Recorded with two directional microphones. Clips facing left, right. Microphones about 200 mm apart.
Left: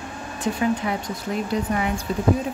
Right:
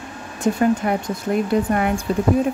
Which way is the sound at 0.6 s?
50° right (ahead or behind).